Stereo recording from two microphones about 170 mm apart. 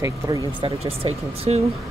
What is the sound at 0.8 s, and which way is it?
Speech, 40° right (ahead or behind).